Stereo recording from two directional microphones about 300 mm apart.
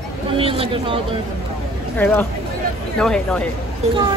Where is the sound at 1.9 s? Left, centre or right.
Centre.